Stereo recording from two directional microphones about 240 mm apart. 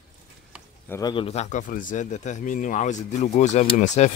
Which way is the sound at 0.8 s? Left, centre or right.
Centre.